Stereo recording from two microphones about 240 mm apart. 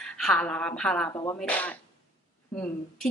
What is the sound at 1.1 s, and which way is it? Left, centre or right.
Speech, centre.